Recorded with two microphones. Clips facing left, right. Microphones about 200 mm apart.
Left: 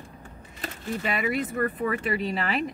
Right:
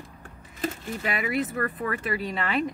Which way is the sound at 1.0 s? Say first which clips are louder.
Even; centre (ahead or behind).